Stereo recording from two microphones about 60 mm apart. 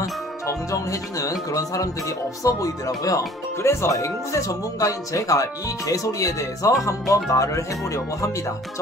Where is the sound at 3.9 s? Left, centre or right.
Left.